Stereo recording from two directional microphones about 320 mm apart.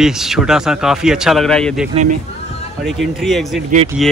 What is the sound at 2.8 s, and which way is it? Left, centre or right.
Speech, centre.